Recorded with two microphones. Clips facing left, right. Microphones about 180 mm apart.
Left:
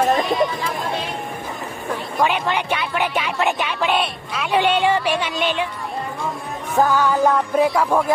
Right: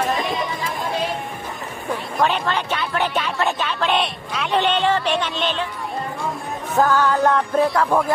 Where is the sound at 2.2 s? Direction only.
15° left (ahead or behind).